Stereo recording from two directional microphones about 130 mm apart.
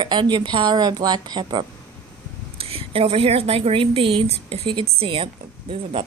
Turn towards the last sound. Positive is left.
turn(degrees=-45)  # may be behind; listen again after turning